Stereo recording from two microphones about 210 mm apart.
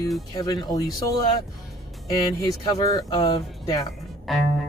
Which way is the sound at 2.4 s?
15° left (ahead or behind).